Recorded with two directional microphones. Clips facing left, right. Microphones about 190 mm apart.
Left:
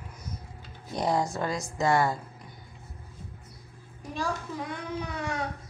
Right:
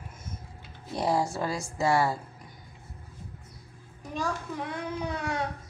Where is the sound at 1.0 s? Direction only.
5° right (ahead or behind).